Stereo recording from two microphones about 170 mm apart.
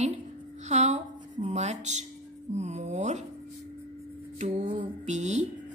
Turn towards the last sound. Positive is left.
turn(degrees=-45)  # may be behind; listen again after turning